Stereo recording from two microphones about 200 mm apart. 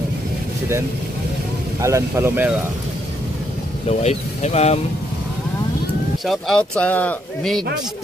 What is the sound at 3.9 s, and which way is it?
Speech, 35° left (ahead or behind).